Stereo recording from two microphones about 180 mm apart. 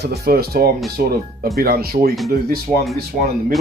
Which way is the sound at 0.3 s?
60° right (ahead or behind).